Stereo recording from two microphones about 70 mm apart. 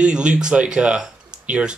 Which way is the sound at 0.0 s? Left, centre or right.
Centre.